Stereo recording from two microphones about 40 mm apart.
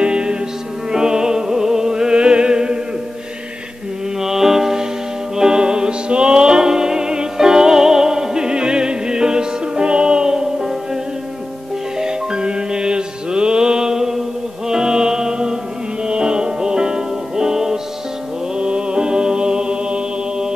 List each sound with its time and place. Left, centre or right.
0.0 s music: right
4.2 s music: centre
12.0 s music: centre
18.6 s music: right